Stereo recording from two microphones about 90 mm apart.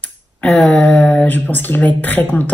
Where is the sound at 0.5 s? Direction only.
10° left (ahead or behind).